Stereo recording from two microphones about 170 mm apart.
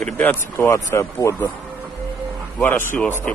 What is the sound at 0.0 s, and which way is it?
A man's voice, 10° left (ahead or behind).